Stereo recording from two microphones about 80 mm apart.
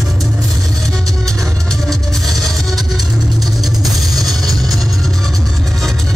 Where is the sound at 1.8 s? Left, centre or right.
Centre.